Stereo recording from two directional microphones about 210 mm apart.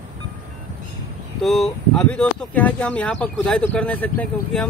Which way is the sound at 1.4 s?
Centre (ahead or behind).